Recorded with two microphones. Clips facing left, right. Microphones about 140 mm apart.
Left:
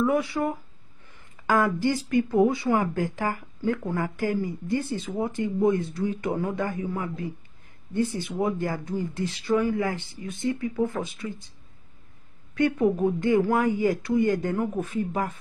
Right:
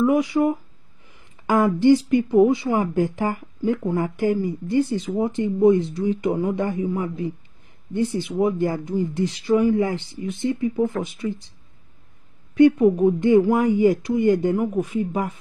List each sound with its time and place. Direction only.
0.0 s speech: 15° right (ahead or behind)
12.5 s a woman's voice: 20° right (ahead or behind)